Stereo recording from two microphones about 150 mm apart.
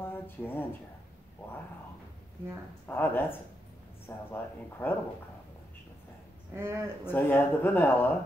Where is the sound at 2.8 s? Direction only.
15° left (ahead or behind).